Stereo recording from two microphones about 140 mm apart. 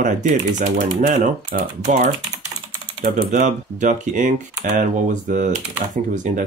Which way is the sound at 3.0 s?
60° right (ahead or behind).